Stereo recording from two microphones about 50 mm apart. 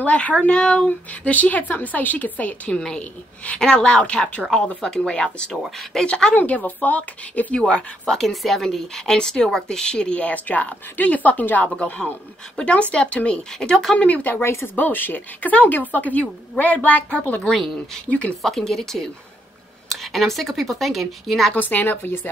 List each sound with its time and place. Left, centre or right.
0.0 s speech: left
0.5 s a woman's voice: centre
0.8 s a woman's voice: left
3.5 s a woman's voice: centre
6.3 s speech: left
8.2 s a woman's voice: centre; by 11.7 s left
12.5 s speech: left
13.9 s speech: left
14.4 s speech: left
14.8 s a woman's voice: left
18.4 s a woman's voice: centre
21.5 s a woman's voice: left